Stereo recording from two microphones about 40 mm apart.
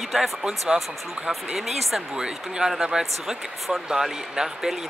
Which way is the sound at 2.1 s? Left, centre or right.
Centre.